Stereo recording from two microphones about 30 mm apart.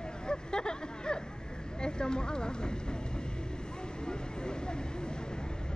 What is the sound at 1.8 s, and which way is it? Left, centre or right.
Speech, left.